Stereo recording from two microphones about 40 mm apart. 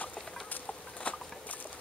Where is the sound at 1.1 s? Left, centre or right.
Left.